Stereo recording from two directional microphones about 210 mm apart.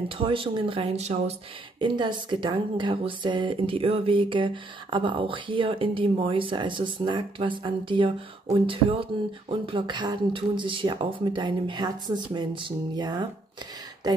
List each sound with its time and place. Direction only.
0.2 s speech: 25° right (ahead or behind)
1.8 s speech: 20° right (ahead or behind)